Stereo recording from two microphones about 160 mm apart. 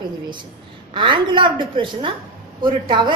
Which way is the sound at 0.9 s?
30° right (ahead or behind).